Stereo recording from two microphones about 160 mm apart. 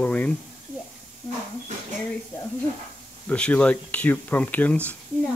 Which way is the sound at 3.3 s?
10° left (ahead or behind).